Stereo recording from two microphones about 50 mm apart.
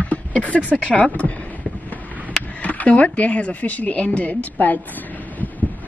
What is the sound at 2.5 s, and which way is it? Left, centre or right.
Speech, left.